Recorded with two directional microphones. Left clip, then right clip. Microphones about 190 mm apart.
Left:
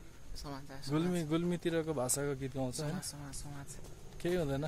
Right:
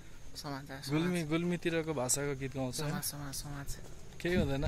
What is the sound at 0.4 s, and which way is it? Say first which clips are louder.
Speech: right 4 dB; 40° right (ahead or behind).